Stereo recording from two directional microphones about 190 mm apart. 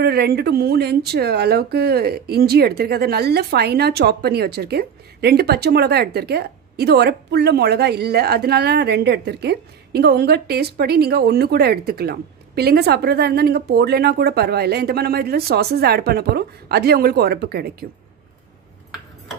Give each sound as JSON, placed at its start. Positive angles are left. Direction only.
{"t": 0.0, "sound": "speech", "side_deg": -55}